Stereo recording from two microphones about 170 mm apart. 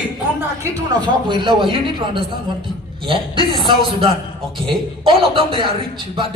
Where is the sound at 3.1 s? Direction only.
30° right (ahead or behind).